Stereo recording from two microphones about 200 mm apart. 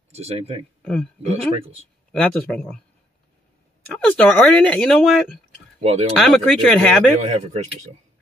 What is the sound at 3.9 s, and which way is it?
Speech, 5° left (ahead or behind).